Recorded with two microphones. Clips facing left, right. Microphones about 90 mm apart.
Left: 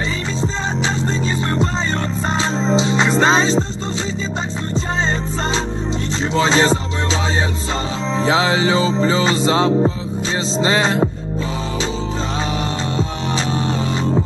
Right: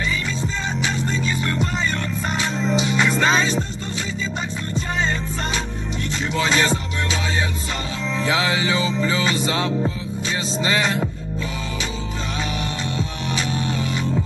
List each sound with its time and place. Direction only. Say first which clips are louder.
2.3 s music: left 4 dB; 30° left (ahead or behind)
6.3 s music: left 5 dB; 30° left (ahead or behind)
8.2 s music: left 5 dB; 30° left (ahead or behind)